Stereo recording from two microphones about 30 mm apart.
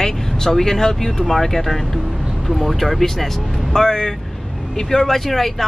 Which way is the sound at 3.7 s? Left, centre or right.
Left.